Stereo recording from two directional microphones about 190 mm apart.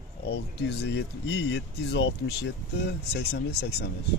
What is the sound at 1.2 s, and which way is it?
Speech, 70° left (ahead or behind).